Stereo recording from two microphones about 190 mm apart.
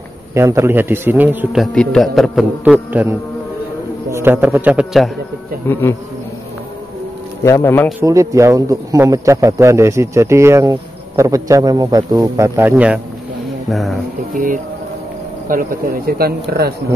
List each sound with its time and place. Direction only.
0.3 s a man's voice: 15° right (ahead or behind)
5.7 s speech: 10° left (ahead or behind)
7.4 s speech: 15° left (ahead or behind)
8.0 s a man's voice: 15° right (ahead or behind); by 13.9 s centre (ahead or behind)
14.3 s speech: 45° right (ahead or behind)